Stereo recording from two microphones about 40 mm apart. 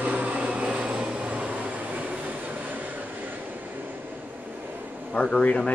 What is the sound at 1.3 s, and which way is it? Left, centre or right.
Vehicle, right.